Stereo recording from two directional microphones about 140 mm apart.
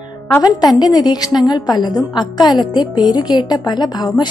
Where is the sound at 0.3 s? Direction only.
25° left (ahead or behind).